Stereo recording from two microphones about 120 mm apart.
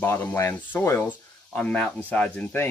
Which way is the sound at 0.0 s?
20° left (ahead or behind).